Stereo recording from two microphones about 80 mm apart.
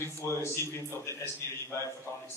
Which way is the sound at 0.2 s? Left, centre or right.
Left.